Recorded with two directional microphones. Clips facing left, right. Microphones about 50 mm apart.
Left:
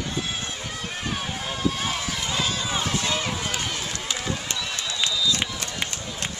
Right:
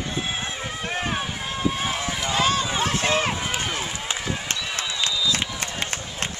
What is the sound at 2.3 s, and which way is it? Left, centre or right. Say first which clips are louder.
Run: right 6 dB; right.